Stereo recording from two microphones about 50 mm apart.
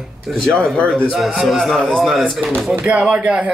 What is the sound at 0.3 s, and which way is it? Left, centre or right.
Speech, centre.